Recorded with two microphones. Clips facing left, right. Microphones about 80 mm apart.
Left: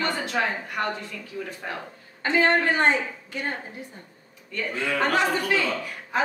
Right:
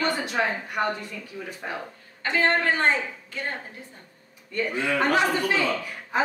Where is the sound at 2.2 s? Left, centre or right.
Centre.